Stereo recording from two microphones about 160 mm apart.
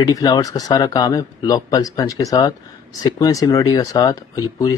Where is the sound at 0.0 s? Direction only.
25° left (ahead or behind).